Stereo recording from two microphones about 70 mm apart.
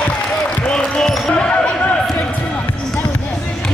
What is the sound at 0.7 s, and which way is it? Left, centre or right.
Basketball bounce, centre.